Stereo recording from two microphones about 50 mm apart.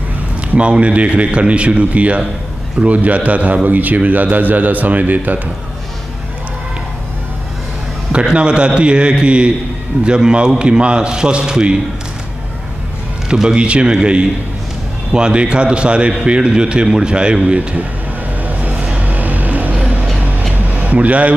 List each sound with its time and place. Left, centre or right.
0.6 s a man's voice: right
8.1 s a man's voice: right
13.3 s a man's voice: centre
18.4 s music: right
20.5 s a sound: right